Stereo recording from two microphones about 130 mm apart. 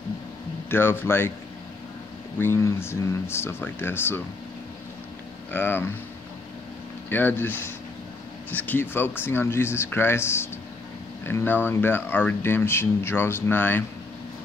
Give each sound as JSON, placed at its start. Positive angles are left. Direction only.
{"t": 0.7, "sound": "speech", "side_deg": 15}
{"t": 2.3, "sound": "speech", "side_deg": 20}
{"t": 5.5, "sound": "speech", "side_deg": 15}
{"t": 7.1, "sound": "speech", "side_deg": 15}